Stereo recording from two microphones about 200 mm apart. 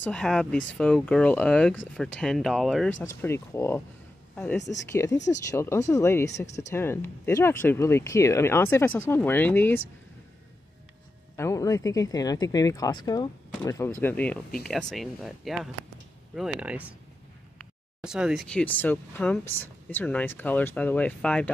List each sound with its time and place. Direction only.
0.0 s speech: 5° left (ahead or behind)
3.0 s speech: 15° left (ahead or behind)
4.6 s speech: 60° left (ahead or behind)
5.5 s speech: 15° left (ahead or behind)
11.3 s speech: 15° left (ahead or behind); by 16.9 s 5° right (ahead or behind)
18.0 s speech: 5° right (ahead or behind)